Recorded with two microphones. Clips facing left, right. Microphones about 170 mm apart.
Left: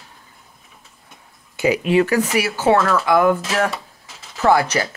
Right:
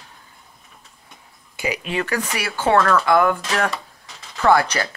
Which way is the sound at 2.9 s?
10° left (ahead or behind).